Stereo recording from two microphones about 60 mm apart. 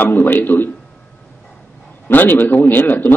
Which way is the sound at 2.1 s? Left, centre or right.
Left.